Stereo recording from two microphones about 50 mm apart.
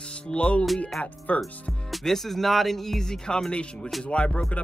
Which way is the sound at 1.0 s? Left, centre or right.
Left.